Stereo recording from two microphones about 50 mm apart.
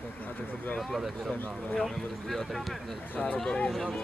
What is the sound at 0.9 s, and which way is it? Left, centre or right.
Speech, centre.